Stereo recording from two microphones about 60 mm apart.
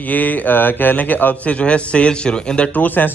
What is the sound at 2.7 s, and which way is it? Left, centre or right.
Speech, left.